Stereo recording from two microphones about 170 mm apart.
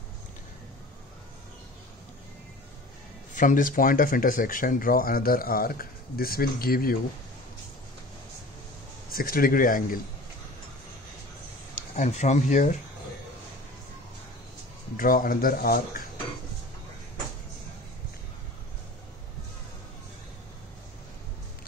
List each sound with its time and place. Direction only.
3.3 s speech: 50° left (ahead or behind)
9.1 s speech: 60° left (ahead or behind)
11.9 s speech: 45° left (ahead or behind)
15.0 s speech: 55° left (ahead or behind)